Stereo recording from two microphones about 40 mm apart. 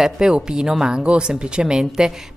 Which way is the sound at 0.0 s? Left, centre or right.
Centre.